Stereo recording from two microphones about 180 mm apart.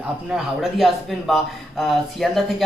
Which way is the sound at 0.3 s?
Centre (ahead or behind).